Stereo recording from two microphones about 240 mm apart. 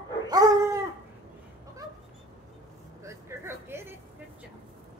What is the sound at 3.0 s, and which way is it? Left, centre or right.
Vehicle, centre.